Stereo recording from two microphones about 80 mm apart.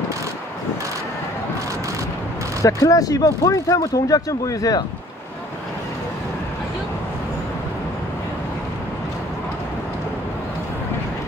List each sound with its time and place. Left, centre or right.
2.6 s speech: left